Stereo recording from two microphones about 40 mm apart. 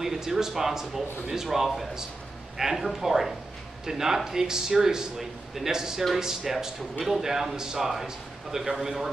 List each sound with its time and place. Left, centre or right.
0.0 s speech: centre